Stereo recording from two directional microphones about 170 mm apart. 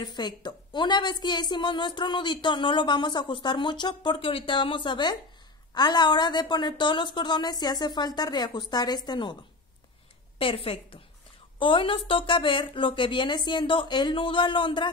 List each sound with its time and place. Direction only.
0.0 s a woman's voice: 25° left (ahead or behind)
10.4 s a woman's voice: 35° left (ahead or behind)